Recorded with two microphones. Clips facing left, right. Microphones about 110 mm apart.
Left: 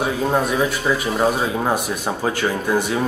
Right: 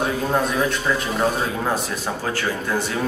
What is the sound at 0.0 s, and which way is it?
Speech, 5° left (ahead or behind).